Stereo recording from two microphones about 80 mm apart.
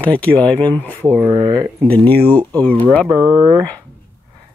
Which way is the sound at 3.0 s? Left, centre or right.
Right.